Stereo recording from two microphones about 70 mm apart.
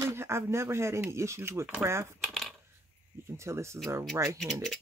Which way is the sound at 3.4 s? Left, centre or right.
Right.